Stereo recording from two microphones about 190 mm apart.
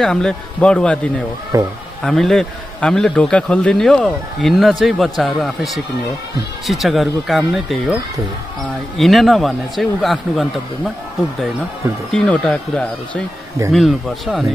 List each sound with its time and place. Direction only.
0.0 s a man's voice: 5° left (ahead or behind)
1.5 s speech: 15° right (ahead or behind)
2.0 s a man's voice: centre (ahead or behind)
12.1 s a man's voice: 5° left (ahead or behind)